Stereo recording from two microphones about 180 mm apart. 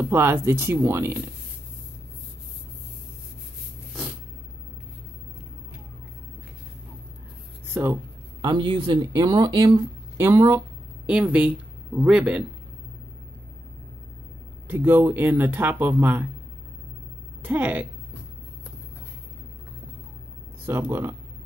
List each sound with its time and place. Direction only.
0.1 s speech: 15° right (ahead or behind)
7.7 s speech: 15° right (ahead or behind)
14.7 s speech: 10° right (ahead or behind)
17.4 s a woman's voice: 10° right (ahead or behind)
20.9 s speech: 10° right (ahead or behind)